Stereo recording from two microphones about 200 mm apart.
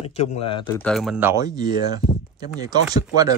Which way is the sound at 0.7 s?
5° left (ahead or behind).